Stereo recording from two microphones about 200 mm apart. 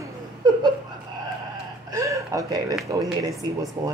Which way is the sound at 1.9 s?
15° right (ahead or behind).